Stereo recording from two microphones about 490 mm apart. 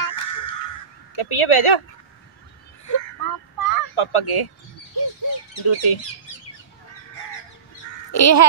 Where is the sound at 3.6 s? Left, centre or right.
Left.